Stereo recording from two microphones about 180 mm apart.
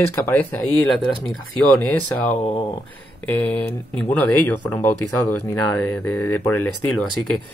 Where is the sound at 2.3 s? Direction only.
30° left (ahead or behind).